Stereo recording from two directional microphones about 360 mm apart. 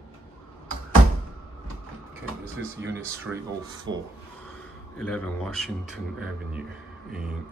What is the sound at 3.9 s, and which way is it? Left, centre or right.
Speech, right.